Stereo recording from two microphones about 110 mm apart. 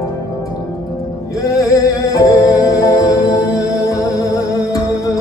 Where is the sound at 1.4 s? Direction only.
30° left (ahead or behind).